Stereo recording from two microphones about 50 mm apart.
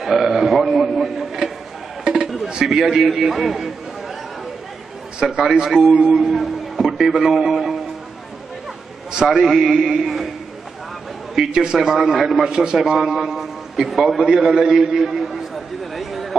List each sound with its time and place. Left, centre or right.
0.0 s a man's voice: centre
2.0 s music: centre
2.7 s a man's voice: centre
5.4 s a man's voice: centre
9.3 s a man's voice: centre
11.3 s a man's voice: centre
12.0 s a man's voice: centre
12.5 s a man's voice: centre
14.1 s a man's voice: centre
14.8 s a sound: centre